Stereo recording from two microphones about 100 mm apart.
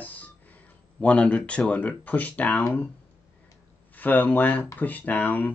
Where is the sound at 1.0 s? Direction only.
10° left (ahead or behind).